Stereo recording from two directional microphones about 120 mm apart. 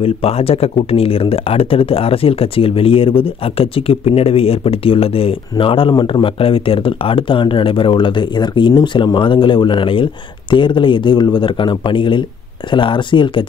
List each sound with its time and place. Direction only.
0.0 s speech: 55° left (ahead or behind)
6.4 s speech: 50° left (ahead or behind)